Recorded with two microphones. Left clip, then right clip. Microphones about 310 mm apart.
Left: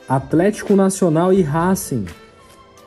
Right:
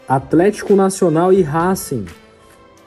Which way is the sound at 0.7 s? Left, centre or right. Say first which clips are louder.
Right 2 dB; right.